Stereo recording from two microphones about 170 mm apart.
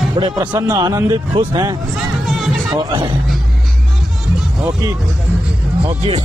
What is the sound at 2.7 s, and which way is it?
Speech, 30° right (ahead or behind).